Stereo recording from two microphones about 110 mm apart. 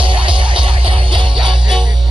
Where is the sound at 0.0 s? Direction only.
50° right (ahead or behind).